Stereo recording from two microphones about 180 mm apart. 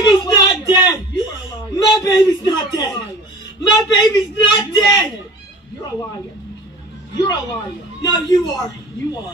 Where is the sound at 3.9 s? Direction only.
25° left (ahead or behind).